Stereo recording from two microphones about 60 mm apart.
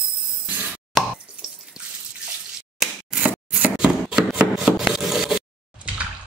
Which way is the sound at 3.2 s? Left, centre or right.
Right.